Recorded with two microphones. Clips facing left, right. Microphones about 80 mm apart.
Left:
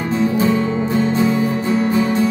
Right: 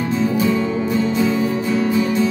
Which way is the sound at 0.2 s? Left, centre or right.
Left.